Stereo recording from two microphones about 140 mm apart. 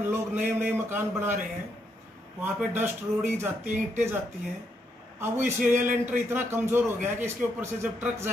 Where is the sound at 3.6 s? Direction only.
60° right (ahead or behind).